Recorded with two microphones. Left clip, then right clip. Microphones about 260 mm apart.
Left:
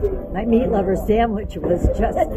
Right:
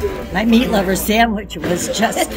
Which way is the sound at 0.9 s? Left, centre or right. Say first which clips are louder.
Right 3 dB; right.